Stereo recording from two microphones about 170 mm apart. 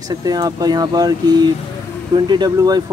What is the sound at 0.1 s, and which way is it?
Speech, 25° right (ahead or behind).